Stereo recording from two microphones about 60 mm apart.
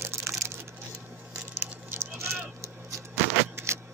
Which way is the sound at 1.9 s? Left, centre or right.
Right.